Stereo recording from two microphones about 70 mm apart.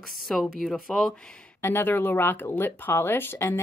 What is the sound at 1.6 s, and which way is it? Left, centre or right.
Speech, left.